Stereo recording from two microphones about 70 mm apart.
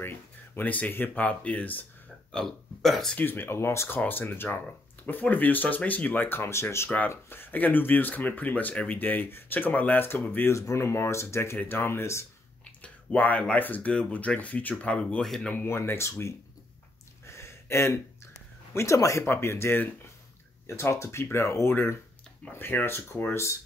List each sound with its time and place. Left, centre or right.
0.6 s speech: left
2.3 s speech: centre
3.2 s speech: left
10.5 s speech: left
12.8 s speech: left
15.5 s speech: left
17.3 s a sound: left
18.7 s speech: left
22.5 s speech: left